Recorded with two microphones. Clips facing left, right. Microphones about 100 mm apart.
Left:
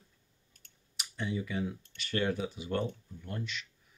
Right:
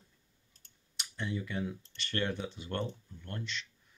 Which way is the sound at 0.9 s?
Centre (ahead or behind).